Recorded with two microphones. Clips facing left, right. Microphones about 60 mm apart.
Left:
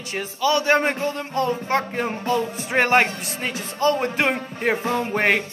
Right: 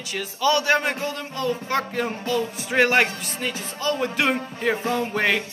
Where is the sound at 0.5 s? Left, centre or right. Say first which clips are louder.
Left 2 dB; left.